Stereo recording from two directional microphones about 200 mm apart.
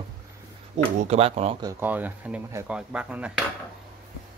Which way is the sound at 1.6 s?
15° right (ahead or behind).